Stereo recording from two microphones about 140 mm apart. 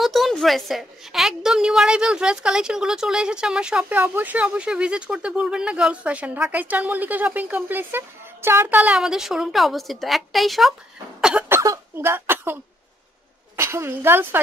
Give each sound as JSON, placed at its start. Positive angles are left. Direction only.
{"t": 0.0, "sound": "a woman's voice", "side_deg": 0}
{"t": 13.6, "sound": "a woman's voice", "side_deg": -20}